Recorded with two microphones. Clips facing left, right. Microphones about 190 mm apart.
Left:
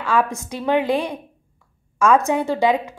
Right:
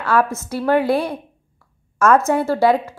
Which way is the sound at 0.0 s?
15° left (ahead or behind).